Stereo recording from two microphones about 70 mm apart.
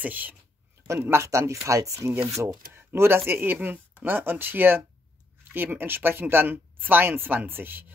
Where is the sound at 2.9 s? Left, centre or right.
Right.